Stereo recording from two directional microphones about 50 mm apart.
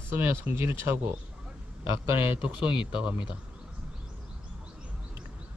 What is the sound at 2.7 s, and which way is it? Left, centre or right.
Speech, centre.